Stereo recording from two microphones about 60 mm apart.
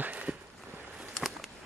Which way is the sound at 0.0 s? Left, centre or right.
Right.